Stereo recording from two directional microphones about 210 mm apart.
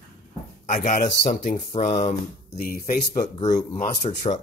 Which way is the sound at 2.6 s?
45° left (ahead or behind).